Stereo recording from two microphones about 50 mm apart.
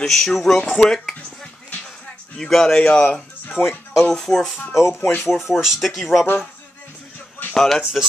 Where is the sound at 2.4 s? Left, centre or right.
Centre.